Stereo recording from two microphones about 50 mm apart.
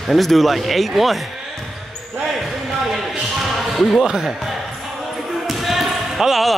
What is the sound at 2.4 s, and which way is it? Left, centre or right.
Basketball bounce, centre.